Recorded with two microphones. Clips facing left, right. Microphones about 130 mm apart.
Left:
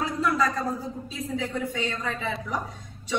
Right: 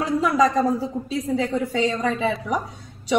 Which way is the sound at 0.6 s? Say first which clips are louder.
Right 9 dB; 90° right.